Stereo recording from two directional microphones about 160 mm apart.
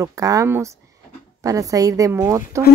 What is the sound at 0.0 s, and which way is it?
Speech, 20° right (ahead or behind).